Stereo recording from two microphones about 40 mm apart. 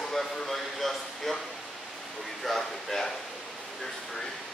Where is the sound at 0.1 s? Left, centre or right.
Centre.